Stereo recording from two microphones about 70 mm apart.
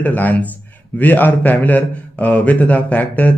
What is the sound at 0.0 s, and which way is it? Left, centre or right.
A man's voice, left.